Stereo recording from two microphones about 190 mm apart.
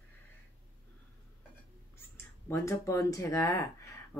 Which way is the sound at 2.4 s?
15° left (ahead or behind).